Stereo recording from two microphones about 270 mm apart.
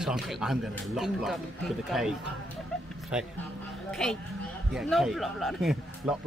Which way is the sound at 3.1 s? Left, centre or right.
Centre.